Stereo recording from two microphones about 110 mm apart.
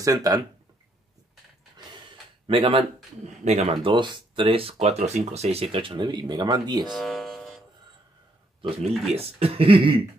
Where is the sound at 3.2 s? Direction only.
90° right.